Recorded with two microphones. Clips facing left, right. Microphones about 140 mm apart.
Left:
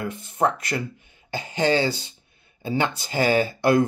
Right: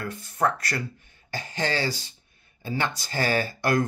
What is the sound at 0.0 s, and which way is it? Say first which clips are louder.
Speech: left 3 dB; 20° left (ahead or behind).